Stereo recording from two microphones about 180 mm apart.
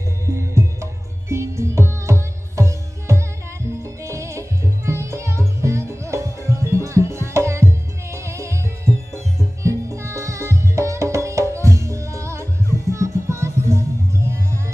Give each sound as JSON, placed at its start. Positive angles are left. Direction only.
{"t": 0.3, "sound": "music", "side_deg": -15}